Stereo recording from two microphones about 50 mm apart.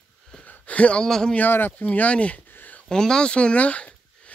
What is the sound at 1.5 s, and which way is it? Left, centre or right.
Speech, left.